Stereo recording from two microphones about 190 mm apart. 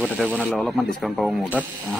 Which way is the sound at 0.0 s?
10° left (ahead or behind).